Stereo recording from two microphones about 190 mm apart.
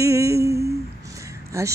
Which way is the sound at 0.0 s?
15° right (ahead or behind).